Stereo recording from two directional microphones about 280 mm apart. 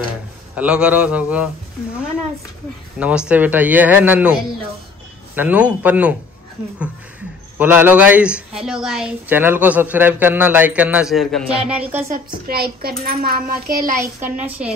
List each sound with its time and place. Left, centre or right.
0.6 s a woman's voice: centre
3.0 s a woman's voice: centre
7.5 s a woman's voice: centre
12.4 s a child's voice: right
13.9 s speech: centre